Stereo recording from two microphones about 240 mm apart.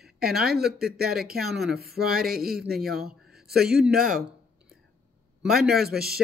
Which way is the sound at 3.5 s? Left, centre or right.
Centre.